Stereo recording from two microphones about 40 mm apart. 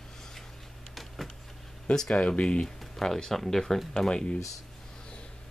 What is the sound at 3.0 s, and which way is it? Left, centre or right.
Speech, centre.